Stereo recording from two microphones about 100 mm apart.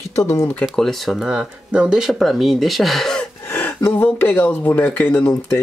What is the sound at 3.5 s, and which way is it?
Gasp, 20° left (ahead or behind).